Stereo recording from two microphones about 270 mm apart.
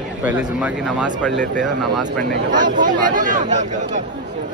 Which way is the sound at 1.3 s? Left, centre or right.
Right.